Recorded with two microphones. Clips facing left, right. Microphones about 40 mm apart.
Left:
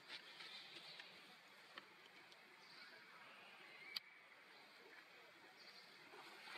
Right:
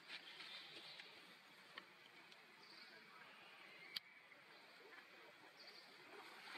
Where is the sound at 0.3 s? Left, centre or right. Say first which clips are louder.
Right 1 dB; centre.